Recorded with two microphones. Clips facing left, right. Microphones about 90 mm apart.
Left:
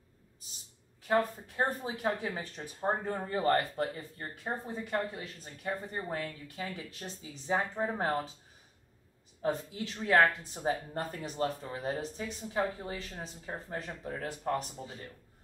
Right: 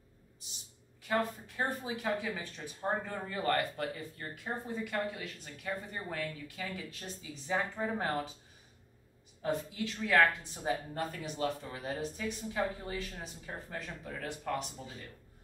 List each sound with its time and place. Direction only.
1.0 s speech: 35° left (ahead or behind)
9.4 s speech: 35° left (ahead or behind)